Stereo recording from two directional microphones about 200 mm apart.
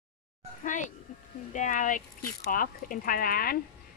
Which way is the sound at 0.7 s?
40° left (ahead or behind).